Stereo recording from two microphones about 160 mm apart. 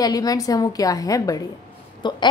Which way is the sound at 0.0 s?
25° left (ahead or behind).